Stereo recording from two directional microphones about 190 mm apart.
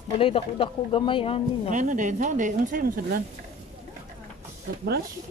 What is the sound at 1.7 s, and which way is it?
Speech, 40° right (ahead or behind).